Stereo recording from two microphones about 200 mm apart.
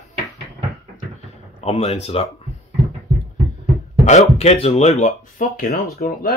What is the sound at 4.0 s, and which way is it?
Speech, 35° left (ahead or behind).